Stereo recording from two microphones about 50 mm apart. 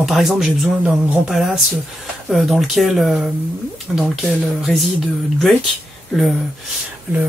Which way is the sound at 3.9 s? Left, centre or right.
Centre.